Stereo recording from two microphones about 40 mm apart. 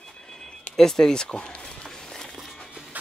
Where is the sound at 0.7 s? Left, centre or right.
Centre.